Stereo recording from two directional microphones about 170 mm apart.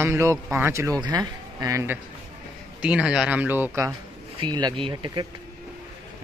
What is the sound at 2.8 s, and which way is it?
Speech, 5° right (ahead or behind).